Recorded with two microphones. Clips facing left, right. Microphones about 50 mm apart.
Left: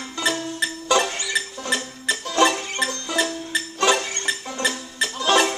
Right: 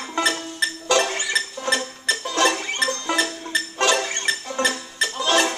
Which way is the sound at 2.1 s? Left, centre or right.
Centre.